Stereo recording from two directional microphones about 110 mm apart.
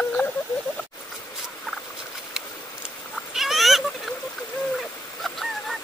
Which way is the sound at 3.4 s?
Centre (ahead or behind).